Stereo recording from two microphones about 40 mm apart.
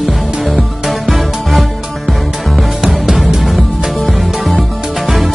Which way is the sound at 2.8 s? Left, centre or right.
Centre.